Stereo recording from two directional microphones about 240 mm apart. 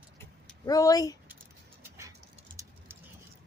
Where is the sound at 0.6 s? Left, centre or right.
Centre.